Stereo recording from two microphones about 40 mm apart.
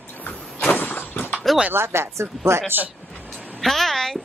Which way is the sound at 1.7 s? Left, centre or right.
Right.